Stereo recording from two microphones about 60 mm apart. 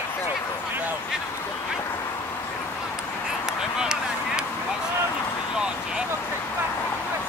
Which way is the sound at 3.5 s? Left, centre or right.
Centre.